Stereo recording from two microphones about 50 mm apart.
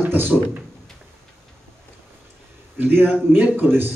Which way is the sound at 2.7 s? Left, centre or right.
Right.